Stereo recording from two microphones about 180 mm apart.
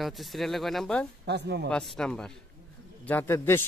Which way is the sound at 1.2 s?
65° right (ahead or behind).